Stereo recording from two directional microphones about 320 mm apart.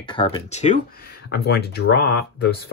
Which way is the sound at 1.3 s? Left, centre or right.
Left.